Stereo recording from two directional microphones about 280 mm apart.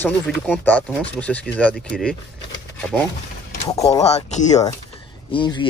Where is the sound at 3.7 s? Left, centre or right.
Left.